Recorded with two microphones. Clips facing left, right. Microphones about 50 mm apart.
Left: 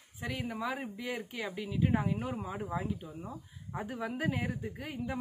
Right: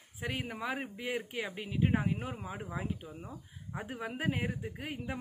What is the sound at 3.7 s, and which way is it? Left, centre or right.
Speech, centre.